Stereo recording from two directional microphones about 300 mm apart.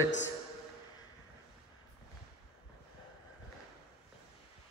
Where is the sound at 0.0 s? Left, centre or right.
Left.